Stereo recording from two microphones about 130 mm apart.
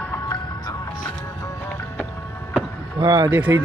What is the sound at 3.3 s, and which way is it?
Speech, 15° right (ahead or behind).